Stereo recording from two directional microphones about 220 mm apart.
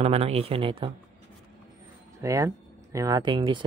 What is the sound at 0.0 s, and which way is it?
Speech, 30° right (ahead or behind).